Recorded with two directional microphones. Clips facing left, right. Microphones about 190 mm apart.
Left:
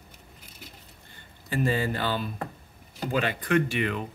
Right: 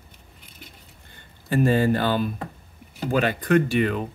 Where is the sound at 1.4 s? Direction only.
50° right (ahead or behind).